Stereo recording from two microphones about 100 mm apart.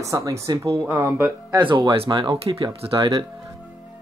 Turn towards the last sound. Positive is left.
turn(degrees=-55)  # may be behind; listen again after turning